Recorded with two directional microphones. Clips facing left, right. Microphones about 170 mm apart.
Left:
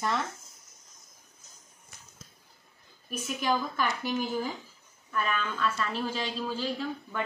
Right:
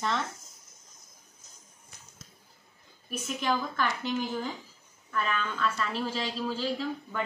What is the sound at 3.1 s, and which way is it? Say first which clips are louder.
A woman's voice: left 1 dB; 10° left (ahead or behind).